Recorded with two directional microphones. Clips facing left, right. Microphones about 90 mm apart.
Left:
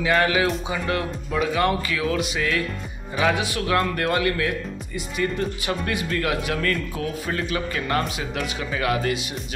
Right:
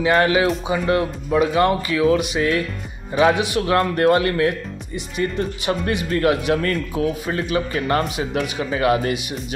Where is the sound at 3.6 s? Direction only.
30° right (ahead or behind).